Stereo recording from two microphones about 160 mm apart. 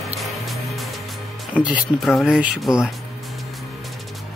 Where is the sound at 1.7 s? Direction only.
Centre (ahead or behind).